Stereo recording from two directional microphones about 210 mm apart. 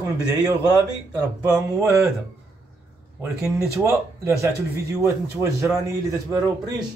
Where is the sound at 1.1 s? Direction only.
15° right (ahead or behind).